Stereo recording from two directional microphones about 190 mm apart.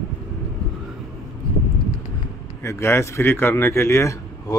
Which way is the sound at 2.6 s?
15° left (ahead or behind).